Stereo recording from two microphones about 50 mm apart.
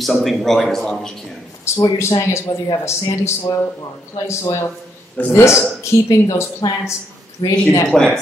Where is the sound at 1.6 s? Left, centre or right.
Left.